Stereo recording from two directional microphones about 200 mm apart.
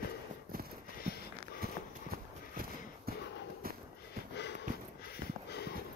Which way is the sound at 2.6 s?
45° right (ahead or behind).